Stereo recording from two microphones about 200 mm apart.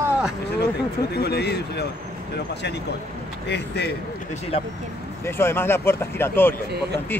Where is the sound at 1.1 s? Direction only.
55° left (ahead or behind).